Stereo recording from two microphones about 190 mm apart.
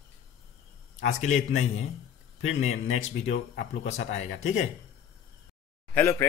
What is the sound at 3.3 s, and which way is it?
A man's voice, 35° left (ahead or behind).